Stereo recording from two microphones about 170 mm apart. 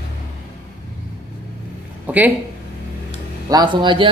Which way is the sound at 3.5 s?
25° right (ahead or behind).